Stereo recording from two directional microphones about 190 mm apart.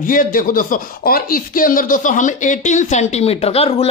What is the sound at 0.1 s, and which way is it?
Speech, 45° left (ahead or behind).